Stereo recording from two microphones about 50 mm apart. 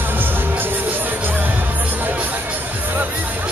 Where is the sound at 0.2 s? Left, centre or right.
Right.